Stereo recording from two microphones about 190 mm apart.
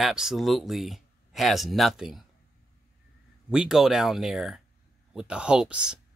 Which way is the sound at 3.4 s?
5° right (ahead or behind).